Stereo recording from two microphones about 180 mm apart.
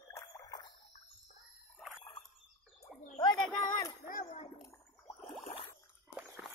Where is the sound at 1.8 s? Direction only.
Centre (ahead or behind).